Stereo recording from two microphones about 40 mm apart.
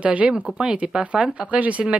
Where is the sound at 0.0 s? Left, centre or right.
Right.